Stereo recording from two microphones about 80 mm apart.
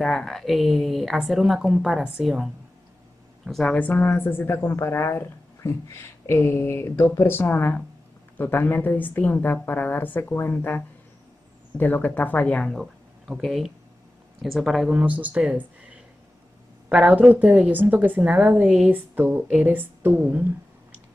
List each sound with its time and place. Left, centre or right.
0.0 s a woman's voice: centre
3.6 s speech: centre
12.7 s a woman's voice: centre
15.0 s a woman's voice: centre
18.9 s a woman's voice: right
20.2 s a sound: centre